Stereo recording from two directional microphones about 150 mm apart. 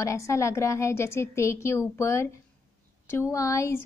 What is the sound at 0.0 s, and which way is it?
A woman's voice, 20° left (ahead or behind).